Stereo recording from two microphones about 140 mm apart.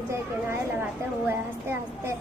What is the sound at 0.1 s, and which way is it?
A woman's voice, 15° right (ahead or behind).